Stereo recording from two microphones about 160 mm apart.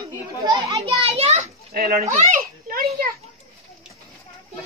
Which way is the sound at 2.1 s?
55° right (ahead or behind).